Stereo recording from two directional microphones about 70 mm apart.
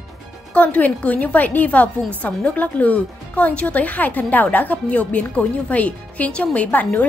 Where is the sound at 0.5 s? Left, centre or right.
Centre.